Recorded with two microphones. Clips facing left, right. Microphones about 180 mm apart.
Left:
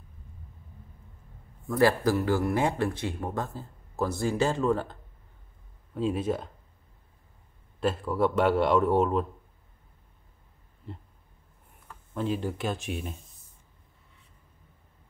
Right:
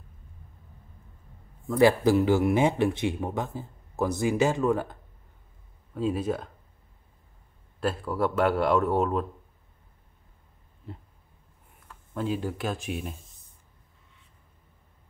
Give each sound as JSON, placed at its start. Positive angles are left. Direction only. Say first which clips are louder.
{"t": 1.8, "sound": "speech", "louder": "right 3 dB", "side_deg": -15}
{"t": 5.9, "sound": "speech", "louder": "even", "side_deg": 0}
{"t": 7.8, "sound": "speech", "louder": "left 1 dB", "side_deg": 0}
{"t": 12.1, "sound": "speech", "louder": "even", "side_deg": 0}